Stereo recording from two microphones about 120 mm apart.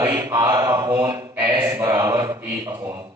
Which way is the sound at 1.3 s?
15° right (ahead or behind).